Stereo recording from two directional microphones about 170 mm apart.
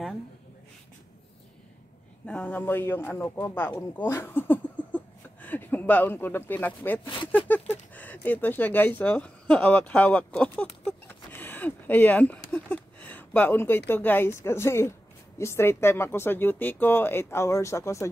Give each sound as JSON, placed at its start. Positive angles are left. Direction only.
{"t": 2.2, "sound": "a man's voice", "side_deg": 10}